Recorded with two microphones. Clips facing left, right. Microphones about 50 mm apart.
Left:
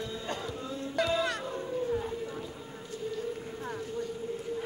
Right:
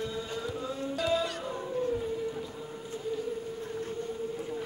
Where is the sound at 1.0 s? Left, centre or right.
Left.